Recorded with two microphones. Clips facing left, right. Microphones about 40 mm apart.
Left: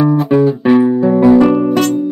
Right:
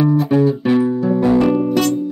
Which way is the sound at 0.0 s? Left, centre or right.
Left.